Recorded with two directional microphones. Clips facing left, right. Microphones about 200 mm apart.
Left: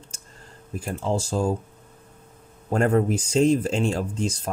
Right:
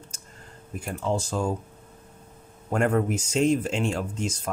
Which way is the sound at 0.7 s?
30° left (ahead or behind).